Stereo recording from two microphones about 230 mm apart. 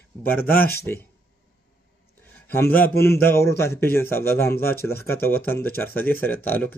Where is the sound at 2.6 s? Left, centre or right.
Left.